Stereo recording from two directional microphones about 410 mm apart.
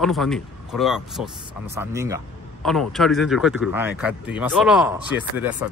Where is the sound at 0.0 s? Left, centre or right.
Centre.